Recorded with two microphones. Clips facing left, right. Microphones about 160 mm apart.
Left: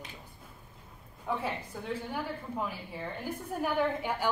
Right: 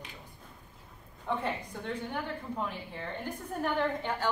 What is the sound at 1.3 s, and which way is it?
A woman's voice, 5° left (ahead or behind).